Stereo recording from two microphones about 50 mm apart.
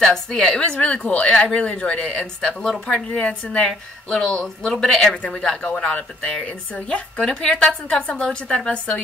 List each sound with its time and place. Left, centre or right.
0.0 s a woman's voice: centre
0.7 s speech: left
2.0 s a woman's voice: centre
3.1 s a woman's voice: left